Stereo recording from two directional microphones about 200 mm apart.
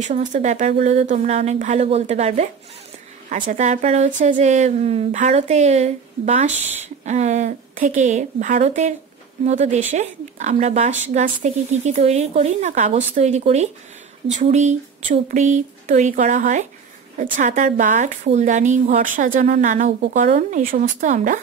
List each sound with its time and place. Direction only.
0.0 s a woman's voice: 35° right (ahead or behind)